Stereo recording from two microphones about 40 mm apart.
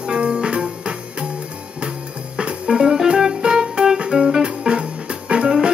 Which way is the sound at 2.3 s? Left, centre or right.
Right.